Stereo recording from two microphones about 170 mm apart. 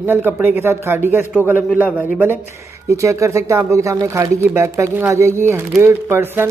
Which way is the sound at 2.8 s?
15° right (ahead or behind).